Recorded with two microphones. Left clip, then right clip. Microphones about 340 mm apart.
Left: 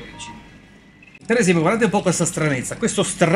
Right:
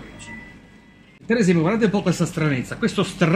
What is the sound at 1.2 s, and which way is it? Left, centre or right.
Speech, left.